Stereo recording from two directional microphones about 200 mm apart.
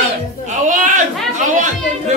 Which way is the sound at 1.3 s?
35° right (ahead or behind).